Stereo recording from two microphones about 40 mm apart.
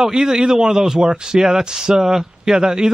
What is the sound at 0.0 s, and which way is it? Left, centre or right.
A man's voice, centre.